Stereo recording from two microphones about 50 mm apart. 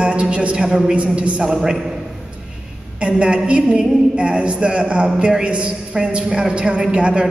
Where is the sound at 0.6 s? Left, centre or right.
Centre.